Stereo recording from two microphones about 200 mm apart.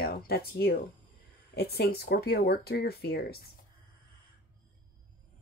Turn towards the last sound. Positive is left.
turn(degrees=50)  # may be behind; listen again after turning